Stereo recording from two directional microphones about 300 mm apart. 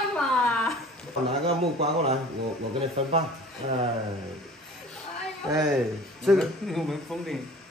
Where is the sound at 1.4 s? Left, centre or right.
Centre.